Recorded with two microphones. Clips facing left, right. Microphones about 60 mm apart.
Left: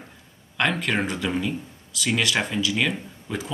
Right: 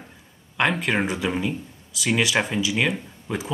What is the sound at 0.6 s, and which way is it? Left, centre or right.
Speech, centre.